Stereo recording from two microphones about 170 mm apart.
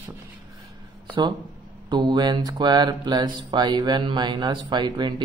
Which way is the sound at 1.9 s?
25° right (ahead or behind).